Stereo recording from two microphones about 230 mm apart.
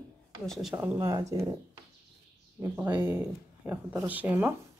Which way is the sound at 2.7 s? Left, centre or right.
Centre.